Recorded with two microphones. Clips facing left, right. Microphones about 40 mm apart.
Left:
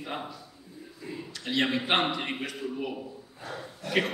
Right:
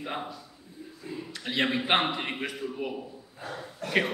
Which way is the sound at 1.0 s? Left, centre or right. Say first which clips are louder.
Even; centre.